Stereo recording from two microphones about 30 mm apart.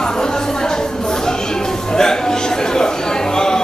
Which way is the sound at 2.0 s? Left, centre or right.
Left.